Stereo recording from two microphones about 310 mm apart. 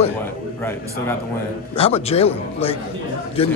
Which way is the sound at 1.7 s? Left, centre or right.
Centre.